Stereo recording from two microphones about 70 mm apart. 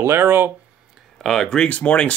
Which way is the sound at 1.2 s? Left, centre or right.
Centre.